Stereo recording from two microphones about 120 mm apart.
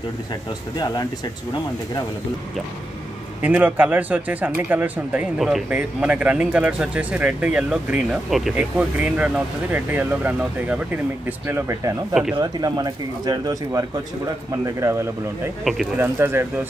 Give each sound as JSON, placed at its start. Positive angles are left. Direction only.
{"t": 0.3, "sound": "speech", "side_deg": 35}
{"t": 3.4, "sound": "speech", "side_deg": -15}
{"t": 12.1, "sound": "speech", "side_deg": -5}
{"t": 12.4, "sound": "speech", "side_deg": -35}